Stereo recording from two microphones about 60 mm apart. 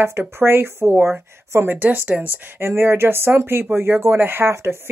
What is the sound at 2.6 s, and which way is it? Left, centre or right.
Speech, right.